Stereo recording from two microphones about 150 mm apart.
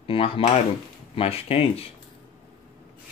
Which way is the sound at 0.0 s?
40° left (ahead or behind).